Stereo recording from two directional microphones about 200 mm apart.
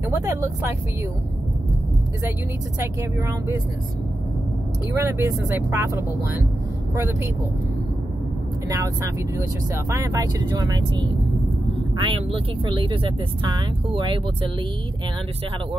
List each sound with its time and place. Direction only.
0.0 s speech: 15° right (ahead or behind)
2.8 s speech: 15° right (ahead or behind)
4.9 s speech: 15° right (ahead or behind)
8.6 s speech: 15° right (ahead or behind)